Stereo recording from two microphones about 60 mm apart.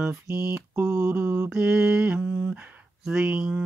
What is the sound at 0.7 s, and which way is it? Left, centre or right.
Mantra, right.